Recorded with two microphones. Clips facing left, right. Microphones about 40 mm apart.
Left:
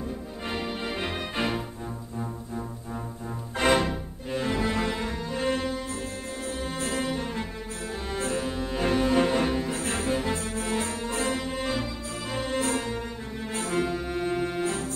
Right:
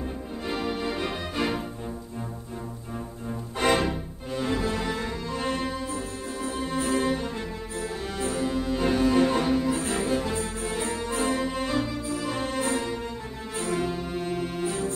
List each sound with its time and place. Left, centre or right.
0.7 s music: left
3.5 s music: left
6.9 s cello: left
8.5 s music: left
11.2 s music: centre
13.6 s music: left